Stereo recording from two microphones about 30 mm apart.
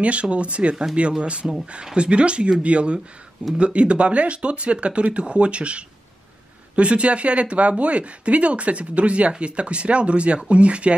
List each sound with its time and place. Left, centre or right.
0.0 s speech: right